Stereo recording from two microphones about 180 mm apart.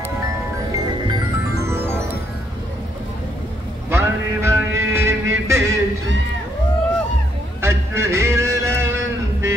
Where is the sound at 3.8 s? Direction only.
15° right (ahead or behind).